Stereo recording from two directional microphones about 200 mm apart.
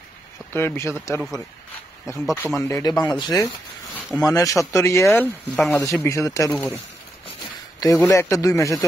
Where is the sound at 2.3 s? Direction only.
10° left (ahead or behind).